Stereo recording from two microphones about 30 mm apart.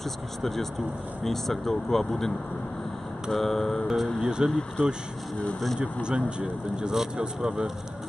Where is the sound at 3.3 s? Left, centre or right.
Centre.